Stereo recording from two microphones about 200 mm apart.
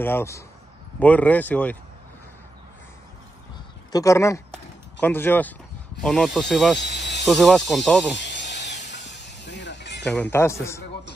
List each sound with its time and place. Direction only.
0.0 s speech: 10° left (ahead or behind)
3.9 s speech: 15° left (ahead or behind)
6.8 s a sound: 60° left (ahead or behind)
7.2 s speech: centre (ahead or behind)
8.2 s a sound: 60° left (ahead or behind)
10.0 s speech: 10° left (ahead or behind)